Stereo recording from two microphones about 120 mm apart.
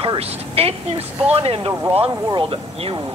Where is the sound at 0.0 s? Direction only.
55° right (ahead or behind).